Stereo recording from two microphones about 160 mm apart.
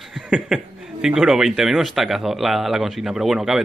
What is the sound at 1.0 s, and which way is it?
Speech, 5° right (ahead or behind).